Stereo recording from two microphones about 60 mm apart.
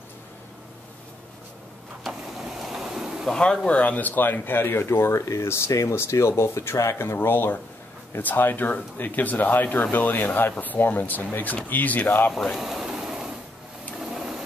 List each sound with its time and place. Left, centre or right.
2.0 s vehicle: centre
3.3 s speech: centre; by 5.1 s left
5.1 s speech: left
12.3 s a sound: centre
13.9 s printer: centre